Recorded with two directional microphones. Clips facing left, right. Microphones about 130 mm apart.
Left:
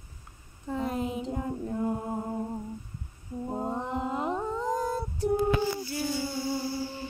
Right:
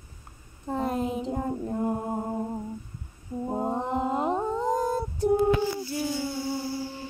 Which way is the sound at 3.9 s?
35° right (ahead or behind).